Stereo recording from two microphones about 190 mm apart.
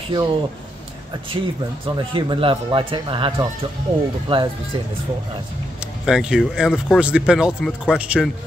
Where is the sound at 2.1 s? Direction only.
25° right (ahead or behind).